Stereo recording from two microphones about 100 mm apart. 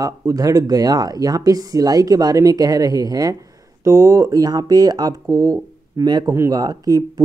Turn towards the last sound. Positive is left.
turn(degrees=-40)  # may be behind; listen again after turning